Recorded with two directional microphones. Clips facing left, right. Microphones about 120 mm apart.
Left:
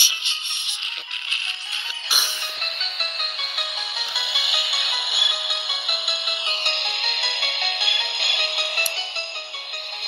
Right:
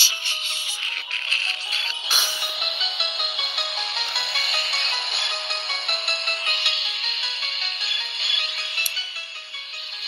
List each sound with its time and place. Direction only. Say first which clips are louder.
0.0 s music: right 1 dB; 20° left (ahead or behind)
2.8 s music: right 2 dB; centre (ahead or behind)
6.6 s music: left 5 dB; 65° left (ahead or behind)